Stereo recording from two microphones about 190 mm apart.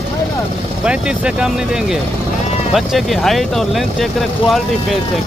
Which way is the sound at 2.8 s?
Centre (ahead or behind).